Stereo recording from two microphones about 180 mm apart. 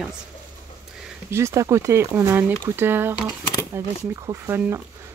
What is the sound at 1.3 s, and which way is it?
Speech, 15° right (ahead or behind).